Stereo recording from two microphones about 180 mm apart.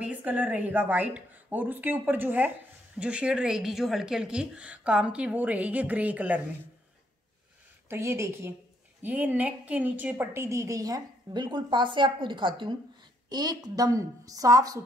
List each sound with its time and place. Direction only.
0.0 s a woman's voice: 10° right (ahead or behind)
7.9 s a woman's voice: 15° right (ahead or behind)